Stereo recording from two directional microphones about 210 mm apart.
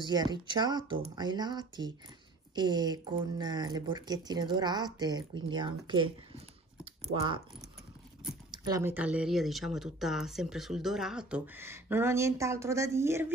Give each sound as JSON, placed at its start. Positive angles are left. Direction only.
{"t": 0.0, "sound": "speech", "side_deg": -20}
{"t": 8.5, "sound": "speech", "side_deg": -15}